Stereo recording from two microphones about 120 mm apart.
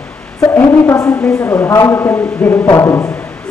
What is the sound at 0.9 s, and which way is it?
Speech, 25° left (ahead or behind).